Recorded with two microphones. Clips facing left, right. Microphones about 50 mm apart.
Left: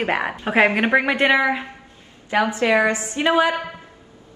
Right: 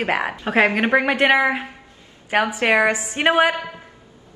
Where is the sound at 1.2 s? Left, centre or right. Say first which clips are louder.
Right 1 dB; right.